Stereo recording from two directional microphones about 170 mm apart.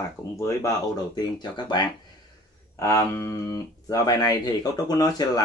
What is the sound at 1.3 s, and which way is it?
Speech, 25° left (ahead or behind).